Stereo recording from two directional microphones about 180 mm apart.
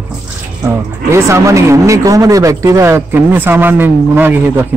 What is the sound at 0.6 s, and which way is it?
Speech, 15° right (ahead or behind).